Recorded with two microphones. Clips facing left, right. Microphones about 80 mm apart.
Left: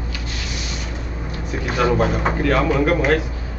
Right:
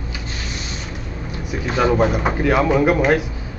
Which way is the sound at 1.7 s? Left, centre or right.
Centre.